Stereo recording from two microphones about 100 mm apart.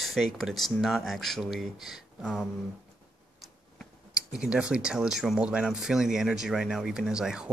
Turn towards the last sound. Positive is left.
turn(degrees=-5)  # may be behind; listen again after turning